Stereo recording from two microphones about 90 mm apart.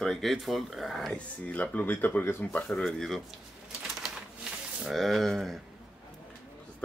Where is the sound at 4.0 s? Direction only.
10° right (ahead or behind).